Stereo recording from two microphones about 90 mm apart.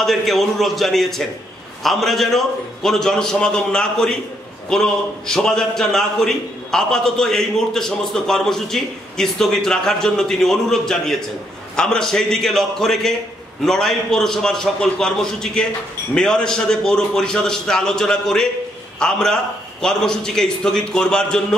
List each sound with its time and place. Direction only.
0.0 s a man's voice: 5° left (ahead or behind)